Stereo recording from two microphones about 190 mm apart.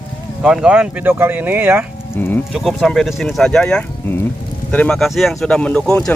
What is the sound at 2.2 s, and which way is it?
Speech, 10° left (ahead or behind).